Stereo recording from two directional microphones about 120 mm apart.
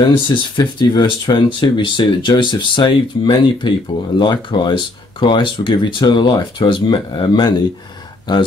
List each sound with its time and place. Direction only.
0.1 s speech: 40° left (ahead or behind)